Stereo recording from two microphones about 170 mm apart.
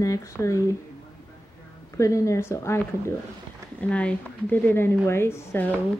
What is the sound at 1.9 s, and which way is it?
Speech, 15° left (ahead or behind).